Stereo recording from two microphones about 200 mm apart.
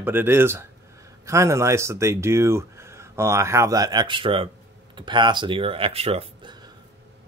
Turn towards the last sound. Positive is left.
turn(degrees=-30)  # may be behind; listen again after turning